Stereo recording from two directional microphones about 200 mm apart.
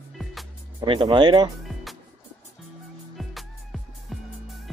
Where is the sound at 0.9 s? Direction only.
25° right (ahead or behind).